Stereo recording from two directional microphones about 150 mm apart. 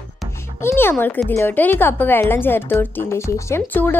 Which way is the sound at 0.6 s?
15° left (ahead or behind).